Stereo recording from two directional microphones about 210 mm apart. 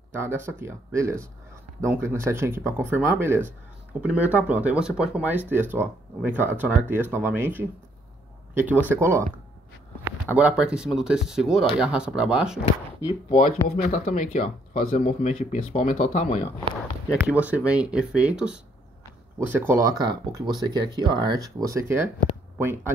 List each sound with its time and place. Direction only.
0.2 s speech: 10° right (ahead or behind)
8.8 s speech: 10° right (ahead or behind)
13.3 s speech: 40° left (ahead or behind)
17.1 s speech: 5° right (ahead or behind)